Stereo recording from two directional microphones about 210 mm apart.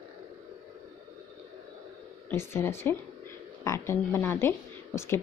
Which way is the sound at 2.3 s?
10° left (ahead or behind).